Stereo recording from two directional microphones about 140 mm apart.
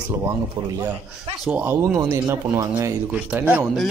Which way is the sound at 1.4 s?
15° right (ahead or behind).